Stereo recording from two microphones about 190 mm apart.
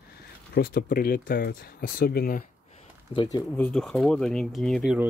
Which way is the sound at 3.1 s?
25° left (ahead or behind).